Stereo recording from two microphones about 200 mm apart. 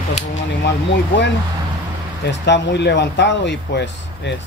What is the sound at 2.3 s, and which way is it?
Speech, 60° left (ahead or behind).